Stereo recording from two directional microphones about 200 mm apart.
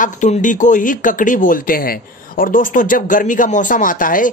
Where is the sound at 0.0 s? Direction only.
40° left (ahead or behind).